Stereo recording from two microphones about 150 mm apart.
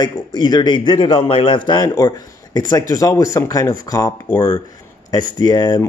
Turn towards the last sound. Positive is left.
turn(degrees=30)  # may be behind; listen again after turning